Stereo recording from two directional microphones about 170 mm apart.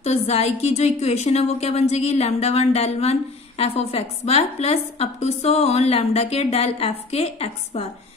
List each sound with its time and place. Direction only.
0.0 s a woman's voice: 40° left (ahead or behind)